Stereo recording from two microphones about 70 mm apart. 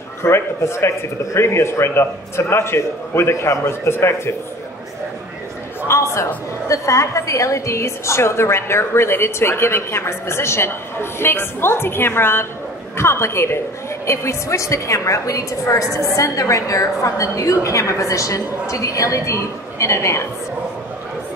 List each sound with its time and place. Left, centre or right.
0.2 s a woman's voice: left
5.8 s a man's voice: left